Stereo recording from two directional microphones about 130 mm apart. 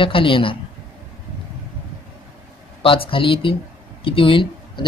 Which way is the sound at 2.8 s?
45° left (ahead or behind).